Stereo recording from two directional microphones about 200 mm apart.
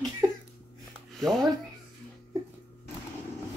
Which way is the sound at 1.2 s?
Centre (ahead or behind).